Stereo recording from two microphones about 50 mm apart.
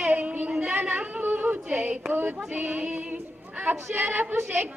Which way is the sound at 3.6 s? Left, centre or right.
Right.